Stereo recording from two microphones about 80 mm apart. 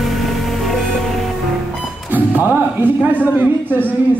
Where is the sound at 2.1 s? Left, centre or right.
Right.